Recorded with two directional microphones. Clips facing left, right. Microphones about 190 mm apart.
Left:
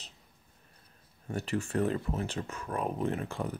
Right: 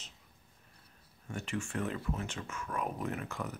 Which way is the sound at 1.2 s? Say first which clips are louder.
Left 5 dB; 35° left (ahead or behind).